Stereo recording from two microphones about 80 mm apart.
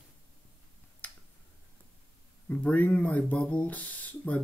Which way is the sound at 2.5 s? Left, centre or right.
Left.